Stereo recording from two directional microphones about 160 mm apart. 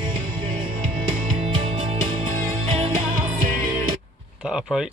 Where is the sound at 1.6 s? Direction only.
35° right (ahead or behind).